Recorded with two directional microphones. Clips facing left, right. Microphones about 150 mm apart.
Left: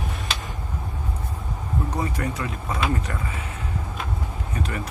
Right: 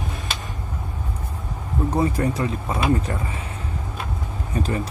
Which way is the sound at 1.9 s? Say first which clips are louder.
Right 9 dB; 30° right (ahead or behind).